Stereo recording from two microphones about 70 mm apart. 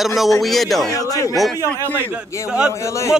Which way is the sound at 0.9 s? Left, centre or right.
Left.